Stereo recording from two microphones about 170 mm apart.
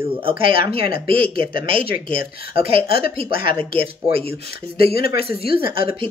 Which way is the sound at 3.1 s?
30° right (ahead or behind).